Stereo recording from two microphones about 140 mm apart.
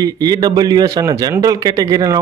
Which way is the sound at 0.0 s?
30° right (ahead or behind).